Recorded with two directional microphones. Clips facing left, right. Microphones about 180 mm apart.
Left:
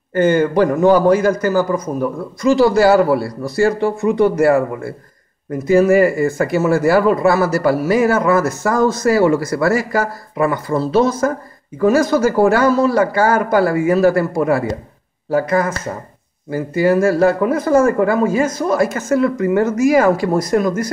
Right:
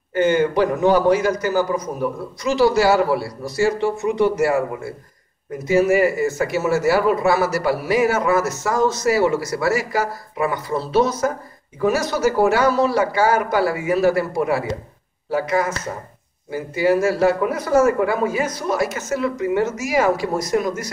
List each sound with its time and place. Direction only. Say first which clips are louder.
0.1 s speech: left 3 dB; 50° left (ahead or behind)